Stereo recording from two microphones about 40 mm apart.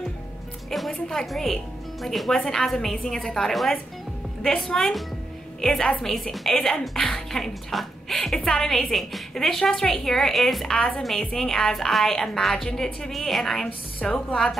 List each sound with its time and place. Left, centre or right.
0.7 s music: centre
1.1 s a woman's voice: centre
4.6 s a woman's voice: centre
13.1 s a woman's voice: centre
14.0 s a woman's voice: left